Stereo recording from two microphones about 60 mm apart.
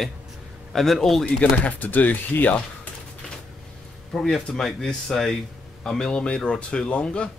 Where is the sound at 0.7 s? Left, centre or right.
Centre.